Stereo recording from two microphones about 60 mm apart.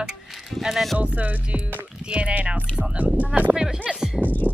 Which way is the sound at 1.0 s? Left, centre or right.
Centre.